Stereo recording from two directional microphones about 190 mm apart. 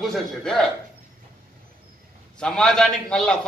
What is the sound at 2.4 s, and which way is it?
Speech, 5° left (ahead or behind).